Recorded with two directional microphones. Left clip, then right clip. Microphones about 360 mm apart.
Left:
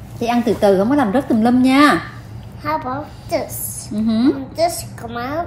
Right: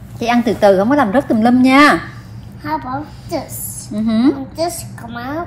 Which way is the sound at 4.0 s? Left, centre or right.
Centre.